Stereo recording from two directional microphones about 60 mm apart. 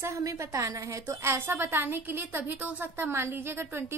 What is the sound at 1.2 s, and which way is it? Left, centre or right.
A woman's voice, right.